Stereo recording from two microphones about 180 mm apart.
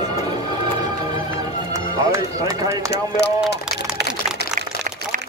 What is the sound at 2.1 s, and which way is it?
Run, 15° right (ahead or behind).